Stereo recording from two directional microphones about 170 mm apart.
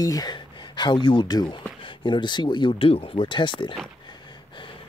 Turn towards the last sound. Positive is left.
turn(degrees=30)  # may be behind; listen again after turning